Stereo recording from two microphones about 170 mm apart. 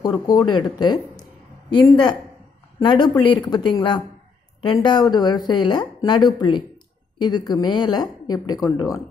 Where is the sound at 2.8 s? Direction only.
25° left (ahead or behind).